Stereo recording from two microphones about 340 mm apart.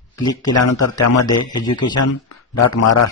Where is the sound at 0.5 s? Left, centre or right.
Left.